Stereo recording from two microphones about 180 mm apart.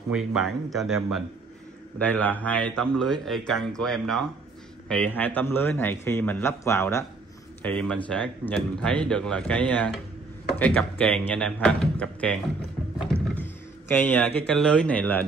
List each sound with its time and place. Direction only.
0.1 s speech: centre (ahead or behind)
2.0 s a man's voice: 10° left (ahead or behind)